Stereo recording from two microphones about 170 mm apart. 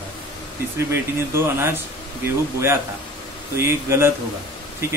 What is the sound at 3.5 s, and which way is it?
Speech, 15° right (ahead or behind).